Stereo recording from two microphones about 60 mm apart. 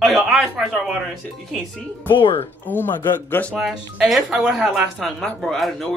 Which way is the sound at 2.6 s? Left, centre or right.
Left.